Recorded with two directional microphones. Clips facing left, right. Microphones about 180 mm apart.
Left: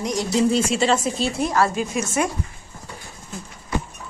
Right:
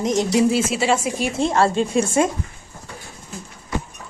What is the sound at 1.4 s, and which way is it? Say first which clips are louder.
Speech: right 4 dB; 25° right (ahead or behind).